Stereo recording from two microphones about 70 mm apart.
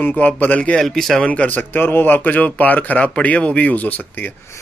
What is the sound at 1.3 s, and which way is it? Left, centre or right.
Speech, left.